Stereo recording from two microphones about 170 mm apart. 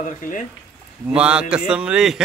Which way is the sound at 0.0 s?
50° left (ahead or behind).